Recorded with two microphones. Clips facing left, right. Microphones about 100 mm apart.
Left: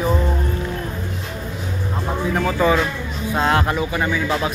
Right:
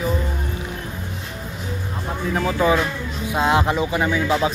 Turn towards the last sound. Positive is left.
turn(degrees=-20)  # may be behind; listen again after turning